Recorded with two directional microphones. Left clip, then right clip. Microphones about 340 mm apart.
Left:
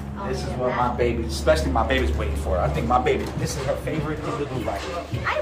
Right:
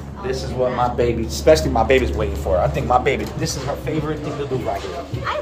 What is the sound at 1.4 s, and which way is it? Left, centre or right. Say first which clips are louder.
Speech: right 6 dB; right.